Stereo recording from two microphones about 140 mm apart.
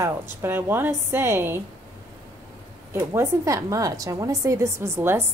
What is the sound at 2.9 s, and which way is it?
A woman's voice, 15° right (ahead or behind).